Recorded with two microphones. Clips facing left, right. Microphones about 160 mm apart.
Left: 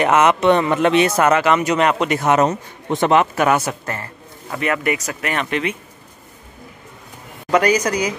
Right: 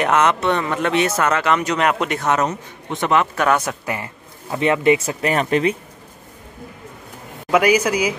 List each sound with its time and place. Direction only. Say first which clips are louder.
0.0 s speech: left 2 dB; 5° left (ahead or behind)
0.4 s a man's voice: left 5 dB; 20° left (ahead or behind)
1.2 s speech: left 3 dB; 5° left (ahead or behind)
2.9 s a man's voice: left 4 dB; 30° left (ahead or behind)
3.3 s speech: left 1 dB; 5° left (ahead or behind)
3.8 s a sound: right 2 dB; 15° right (ahead or behind)
4.6 s speech: right 5 dB; 25° right (ahead or behind)
7.5 s speech: even; 10° right (ahead or behind)